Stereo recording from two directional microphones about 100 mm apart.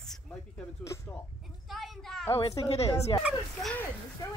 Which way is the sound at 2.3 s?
75° left (ahead or behind).